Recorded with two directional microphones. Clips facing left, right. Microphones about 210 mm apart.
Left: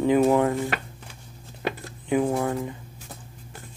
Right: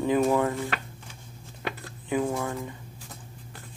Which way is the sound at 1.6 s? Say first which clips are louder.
Left 5 dB; 25° left (ahead or behind).